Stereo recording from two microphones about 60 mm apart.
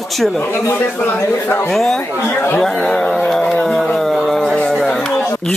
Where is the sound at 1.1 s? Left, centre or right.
Left.